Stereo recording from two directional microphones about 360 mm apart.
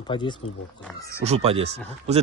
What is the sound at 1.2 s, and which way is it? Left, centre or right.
A man's voice, centre.